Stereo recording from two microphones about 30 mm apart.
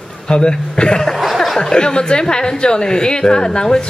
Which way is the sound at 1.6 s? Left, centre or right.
Left.